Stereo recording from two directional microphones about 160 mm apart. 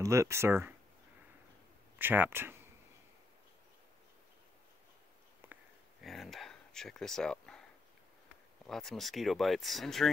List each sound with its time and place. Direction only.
0.0 s speech: 20° right (ahead or behind)
2.0 s speech: 15° right (ahead or behind)
5.4 s sniff: 15° right (ahead or behind)
6.0 s a sound: centre (ahead or behind)
8.6 s speech: centre (ahead or behind)